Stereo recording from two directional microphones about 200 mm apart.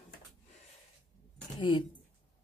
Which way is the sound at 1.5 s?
25° left (ahead or behind).